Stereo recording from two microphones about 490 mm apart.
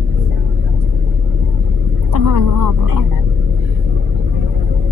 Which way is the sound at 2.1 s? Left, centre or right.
Right.